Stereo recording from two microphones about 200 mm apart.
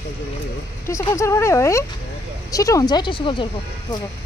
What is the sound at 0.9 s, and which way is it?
Speech, 15° left (ahead or behind).